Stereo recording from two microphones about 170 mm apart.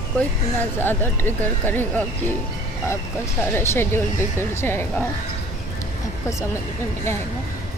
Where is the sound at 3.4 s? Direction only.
15° left (ahead or behind).